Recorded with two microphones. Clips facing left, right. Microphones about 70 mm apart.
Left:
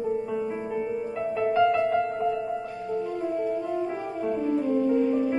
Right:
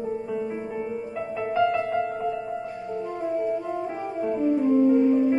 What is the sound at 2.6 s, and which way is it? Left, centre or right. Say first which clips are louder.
Music: left 1 dB; right.